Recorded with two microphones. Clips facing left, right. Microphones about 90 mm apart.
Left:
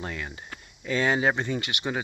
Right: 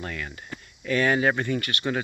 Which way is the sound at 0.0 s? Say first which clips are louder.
Even; 20° left (ahead or behind).